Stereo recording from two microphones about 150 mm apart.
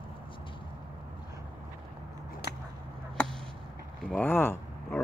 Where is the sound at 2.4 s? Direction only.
90° left.